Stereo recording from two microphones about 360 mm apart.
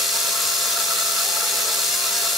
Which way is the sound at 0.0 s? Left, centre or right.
Centre.